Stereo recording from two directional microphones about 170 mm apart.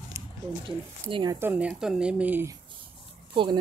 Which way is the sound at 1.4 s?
10° right (ahead or behind).